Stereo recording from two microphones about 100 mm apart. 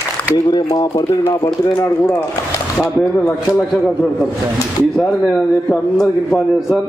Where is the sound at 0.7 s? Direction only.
40° left (ahead or behind).